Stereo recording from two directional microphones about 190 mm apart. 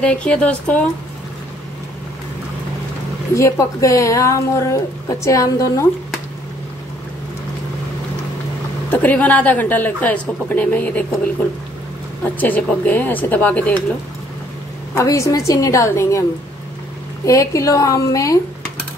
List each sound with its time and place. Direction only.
0.0 s a woman's voice: 5° left (ahead or behind)
3.3 s a woman's voice: 15° left (ahead or behind)
8.9 s a woman's voice: 10° left (ahead or behind)
12.4 s a woman's voice: 10° left (ahead or behind)
15.0 s a woman's voice: 15° left (ahead or behind)
17.3 s a woman's voice: 15° left (ahead or behind)